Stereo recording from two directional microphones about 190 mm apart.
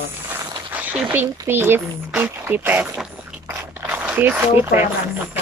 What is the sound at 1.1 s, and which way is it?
Speech, 10° right (ahead or behind).